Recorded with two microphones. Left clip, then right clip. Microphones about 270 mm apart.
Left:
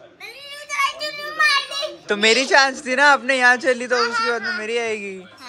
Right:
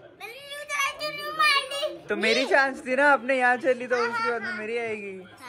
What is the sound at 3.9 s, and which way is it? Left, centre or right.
Speech, left.